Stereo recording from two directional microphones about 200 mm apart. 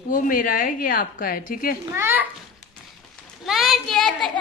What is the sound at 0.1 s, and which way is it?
A woman's voice, 45° left (ahead or behind).